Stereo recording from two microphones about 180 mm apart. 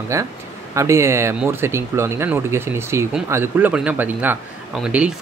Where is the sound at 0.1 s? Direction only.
15° right (ahead or behind).